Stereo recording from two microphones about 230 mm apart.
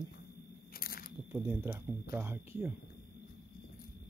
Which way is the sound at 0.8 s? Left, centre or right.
Left.